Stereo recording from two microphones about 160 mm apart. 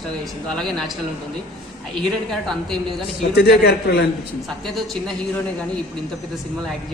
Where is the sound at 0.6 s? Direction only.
Centre (ahead or behind).